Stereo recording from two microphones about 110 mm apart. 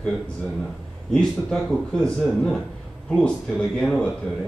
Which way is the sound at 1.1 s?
5° left (ahead or behind).